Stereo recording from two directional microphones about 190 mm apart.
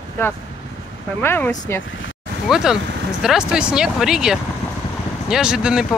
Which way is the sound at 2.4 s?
5° right (ahead or behind).